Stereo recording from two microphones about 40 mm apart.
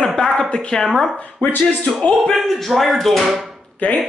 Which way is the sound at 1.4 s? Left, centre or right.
Left.